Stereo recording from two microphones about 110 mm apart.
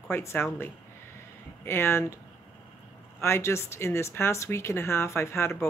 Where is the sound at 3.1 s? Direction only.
25° left (ahead or behind).